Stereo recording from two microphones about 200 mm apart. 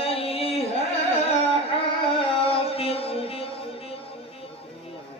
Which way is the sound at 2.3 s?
30° left (ahead or behind).